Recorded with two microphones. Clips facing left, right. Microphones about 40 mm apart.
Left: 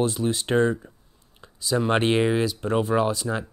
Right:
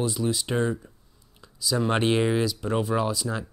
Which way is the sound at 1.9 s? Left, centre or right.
Left.